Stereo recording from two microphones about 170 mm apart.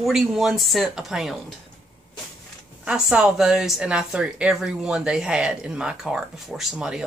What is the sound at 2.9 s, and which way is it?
Speech, 5° right (ahead or behind).